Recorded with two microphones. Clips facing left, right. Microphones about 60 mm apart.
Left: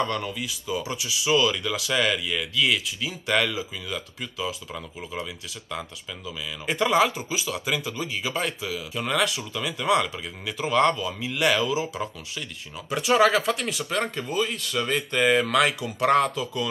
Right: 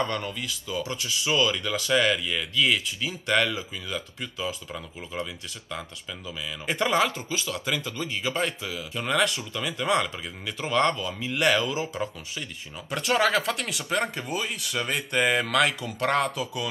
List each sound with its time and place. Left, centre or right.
0.1 s speech: centre
0.4 s speech: centre
7.1 s speech: centre
12.9 s speech: centre
13.8 s speech: centre
15.2 s speech: centre
15.5 s speech: centre